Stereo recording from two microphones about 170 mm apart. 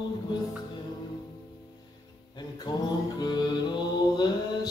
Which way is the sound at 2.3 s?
25° left (ahead or behind).